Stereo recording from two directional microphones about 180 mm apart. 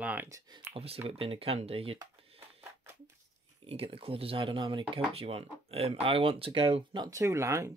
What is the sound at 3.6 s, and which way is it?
Speech, 30° right (ahead or behind).